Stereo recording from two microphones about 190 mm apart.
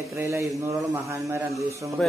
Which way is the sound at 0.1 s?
15° right (ahead or behind).